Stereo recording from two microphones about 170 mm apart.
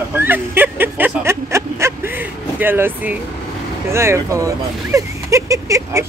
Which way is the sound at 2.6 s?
10° right (ahead or behind).